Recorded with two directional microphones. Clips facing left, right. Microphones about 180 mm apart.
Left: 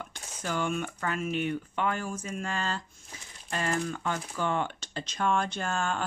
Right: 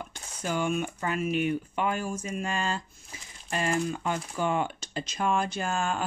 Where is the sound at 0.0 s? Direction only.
15° right (ahead or behind).